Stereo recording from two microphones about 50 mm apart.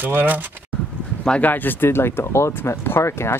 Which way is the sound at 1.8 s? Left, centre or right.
Left.